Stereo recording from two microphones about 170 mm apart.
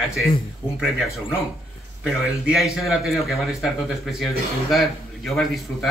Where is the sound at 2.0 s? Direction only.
5° right (ahead or behind).